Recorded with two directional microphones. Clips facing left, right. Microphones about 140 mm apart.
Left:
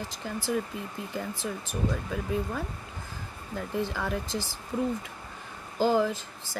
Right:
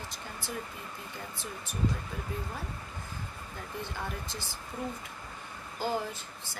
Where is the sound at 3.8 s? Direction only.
90° left.